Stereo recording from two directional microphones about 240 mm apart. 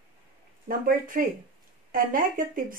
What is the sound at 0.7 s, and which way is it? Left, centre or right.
Speech, right.